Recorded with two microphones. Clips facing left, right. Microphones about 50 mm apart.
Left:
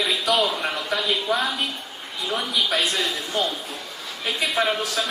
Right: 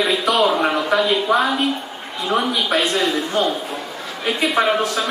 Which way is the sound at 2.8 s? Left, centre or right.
Centre.